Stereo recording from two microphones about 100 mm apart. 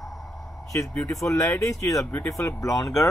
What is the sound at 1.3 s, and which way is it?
Speech, 30° left (ahead or behind).